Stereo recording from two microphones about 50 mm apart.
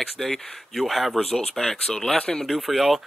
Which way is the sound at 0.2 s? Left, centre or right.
Centre.